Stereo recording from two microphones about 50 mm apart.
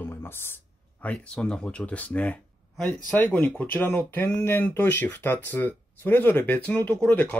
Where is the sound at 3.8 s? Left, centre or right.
Left.